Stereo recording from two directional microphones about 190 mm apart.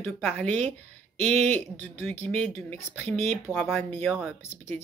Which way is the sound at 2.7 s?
10° left (ahead or behind).